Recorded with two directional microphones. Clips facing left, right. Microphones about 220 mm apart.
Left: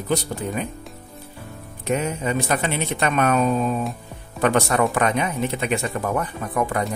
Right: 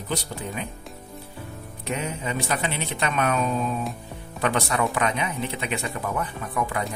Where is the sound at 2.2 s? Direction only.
45° left (ahead or behind).